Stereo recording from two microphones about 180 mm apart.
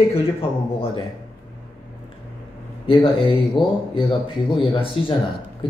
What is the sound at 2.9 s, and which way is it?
Speech, 30° left (ahead or behind).